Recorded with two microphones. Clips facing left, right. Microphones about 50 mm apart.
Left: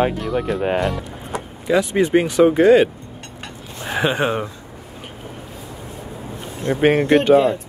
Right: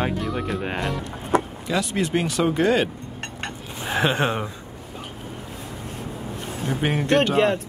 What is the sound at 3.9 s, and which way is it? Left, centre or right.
Speech, centre.